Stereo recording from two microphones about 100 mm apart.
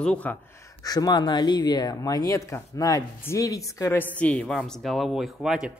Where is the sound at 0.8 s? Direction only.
40° left (ahead or behind).